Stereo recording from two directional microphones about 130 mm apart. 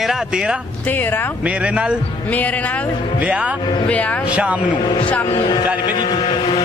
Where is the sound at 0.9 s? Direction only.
15° left (ahead or behind).